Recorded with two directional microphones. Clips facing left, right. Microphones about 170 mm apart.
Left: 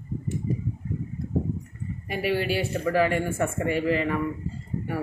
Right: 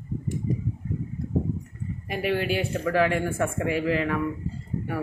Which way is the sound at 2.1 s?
Centre (ahead or behind).